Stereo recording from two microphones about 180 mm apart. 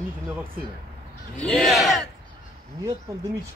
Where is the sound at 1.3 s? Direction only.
5° left (ahead or behind).